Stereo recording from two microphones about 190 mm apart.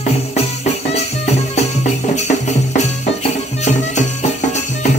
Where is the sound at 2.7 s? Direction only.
40° left (ahead or behind).